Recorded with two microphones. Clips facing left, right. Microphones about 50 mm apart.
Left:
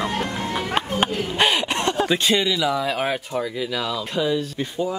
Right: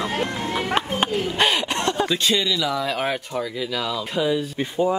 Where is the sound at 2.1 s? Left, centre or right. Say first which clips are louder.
Left 2 dB; centre.